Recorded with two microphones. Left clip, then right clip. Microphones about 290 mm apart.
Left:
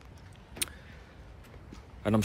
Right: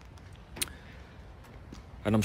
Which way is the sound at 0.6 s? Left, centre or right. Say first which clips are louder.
Even; centre.